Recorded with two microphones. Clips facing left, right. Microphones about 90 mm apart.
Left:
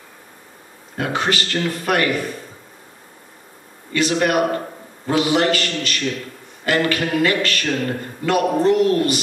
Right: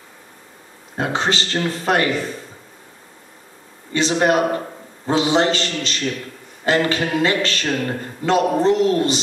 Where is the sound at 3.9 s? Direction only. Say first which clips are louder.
Right 1 dB; 25° right (ahead or behind).